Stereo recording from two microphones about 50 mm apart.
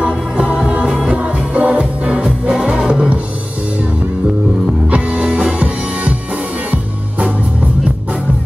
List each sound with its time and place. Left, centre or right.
0.0 s music: right
0.8 s music: centre
1.1 s music: right
4.9 s music: right